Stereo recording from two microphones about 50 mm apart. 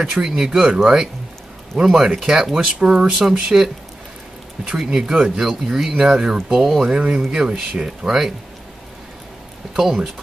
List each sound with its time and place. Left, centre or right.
0.0 s speech: centre
3.3 s speech: centre
4.7 s speech: centre
9.8 s speech: centre